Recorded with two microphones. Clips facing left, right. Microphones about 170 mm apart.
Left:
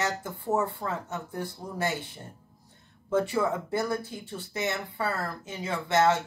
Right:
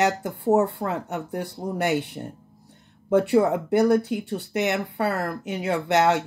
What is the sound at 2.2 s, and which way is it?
Speech, 60° right (ahead or behind).